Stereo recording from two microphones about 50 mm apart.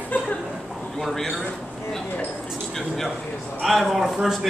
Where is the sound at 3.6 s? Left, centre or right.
Centre.